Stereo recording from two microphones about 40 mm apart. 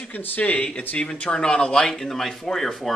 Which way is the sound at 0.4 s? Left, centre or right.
Left.